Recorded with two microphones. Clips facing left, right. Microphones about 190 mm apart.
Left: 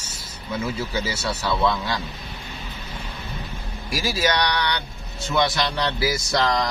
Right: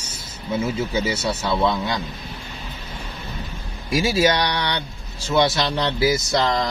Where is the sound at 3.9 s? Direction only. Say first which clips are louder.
Right 5 dB; 25° right (ahead or behind).